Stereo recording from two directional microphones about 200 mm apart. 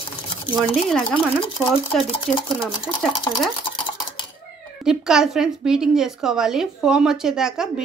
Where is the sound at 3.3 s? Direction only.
15° left (ahead or behind).